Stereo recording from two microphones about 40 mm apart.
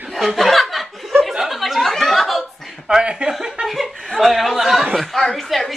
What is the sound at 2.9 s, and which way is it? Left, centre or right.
Speech, right.